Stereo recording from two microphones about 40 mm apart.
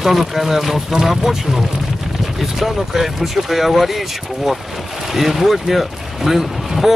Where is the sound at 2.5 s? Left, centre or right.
Centre.